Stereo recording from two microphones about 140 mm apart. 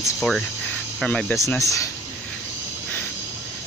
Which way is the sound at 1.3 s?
20° left (ahead or behind).